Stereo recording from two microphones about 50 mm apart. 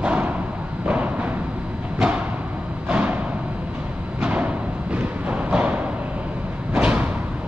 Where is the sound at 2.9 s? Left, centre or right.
Right.